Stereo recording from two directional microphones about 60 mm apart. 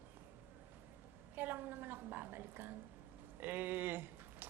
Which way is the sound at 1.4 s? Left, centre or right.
Right.